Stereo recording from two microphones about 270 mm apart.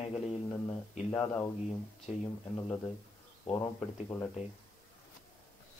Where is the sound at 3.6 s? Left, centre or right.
Centre.